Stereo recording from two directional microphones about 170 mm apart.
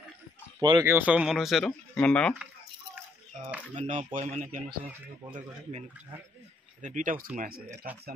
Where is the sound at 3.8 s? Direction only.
45° right (ahead or behind).